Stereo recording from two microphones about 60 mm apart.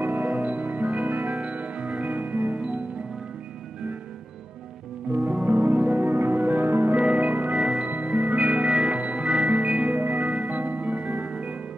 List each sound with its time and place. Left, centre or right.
0.0 s music: right
0.4 s music: right
1.0 s music: right
1.3 s music: right
5.2 s music: right
5.9 s music: right
7.0 s music: centre
7.8 s music: right
8.1 s music: centre
10.5 s music: right